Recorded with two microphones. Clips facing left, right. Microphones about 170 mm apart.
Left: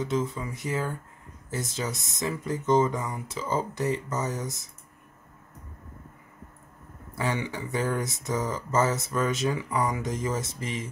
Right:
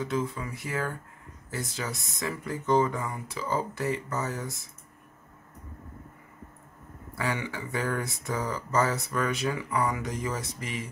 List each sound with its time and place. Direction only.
0.0 s speech: 20° left (ahead or behind)
7.2 s speech: 20° left (ahead or behind)